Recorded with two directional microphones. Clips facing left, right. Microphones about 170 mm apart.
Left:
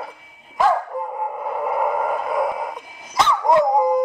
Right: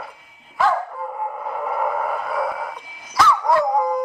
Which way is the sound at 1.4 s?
10° left (ahead or behind).